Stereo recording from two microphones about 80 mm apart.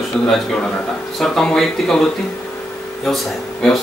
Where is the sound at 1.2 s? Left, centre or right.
Centre.